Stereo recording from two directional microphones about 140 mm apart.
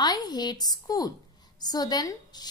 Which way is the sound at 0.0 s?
30° left (ahead or behind).